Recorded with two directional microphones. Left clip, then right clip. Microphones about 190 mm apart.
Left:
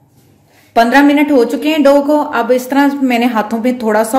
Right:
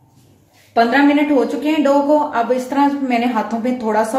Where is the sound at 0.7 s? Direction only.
55° left (ahead or behind).